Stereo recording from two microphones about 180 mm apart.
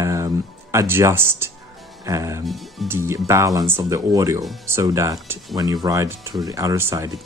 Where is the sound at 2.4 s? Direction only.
Centre (ahead or behind).